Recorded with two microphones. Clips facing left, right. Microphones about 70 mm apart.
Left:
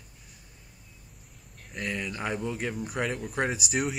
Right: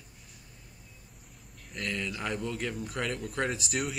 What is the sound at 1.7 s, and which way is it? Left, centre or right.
Speech, centre.